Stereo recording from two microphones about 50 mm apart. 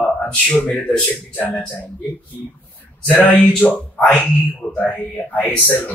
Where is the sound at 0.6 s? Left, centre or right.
Left.